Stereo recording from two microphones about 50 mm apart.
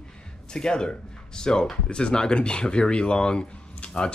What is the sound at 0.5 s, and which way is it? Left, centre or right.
Speech, centre.